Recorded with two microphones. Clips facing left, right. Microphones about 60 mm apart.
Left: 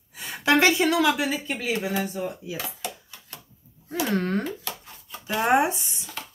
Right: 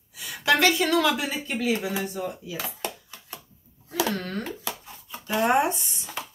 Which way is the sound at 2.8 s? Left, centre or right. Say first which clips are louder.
Right 4 dB; right.